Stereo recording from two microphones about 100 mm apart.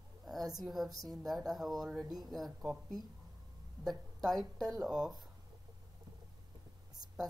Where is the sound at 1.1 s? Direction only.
Centre (ahead or behind).